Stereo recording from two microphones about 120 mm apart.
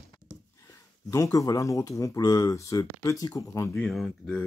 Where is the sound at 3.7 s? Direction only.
5° left (ahead or behind).